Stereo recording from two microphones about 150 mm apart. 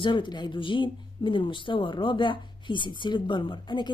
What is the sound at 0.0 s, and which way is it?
Speech, 30° left (ahead or behind).